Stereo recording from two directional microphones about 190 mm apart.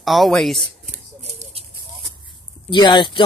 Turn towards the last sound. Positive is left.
turn(degrees=25)  # may be behind; listen again after turning